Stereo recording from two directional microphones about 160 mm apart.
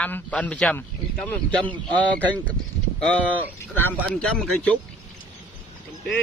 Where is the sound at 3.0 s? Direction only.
10° left (ahead or behind).